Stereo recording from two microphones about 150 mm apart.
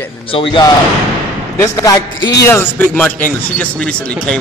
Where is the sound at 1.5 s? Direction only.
20° left (ahead or behind).